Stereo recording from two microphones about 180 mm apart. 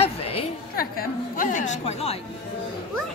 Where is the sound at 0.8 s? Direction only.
50° left (ahead or behind).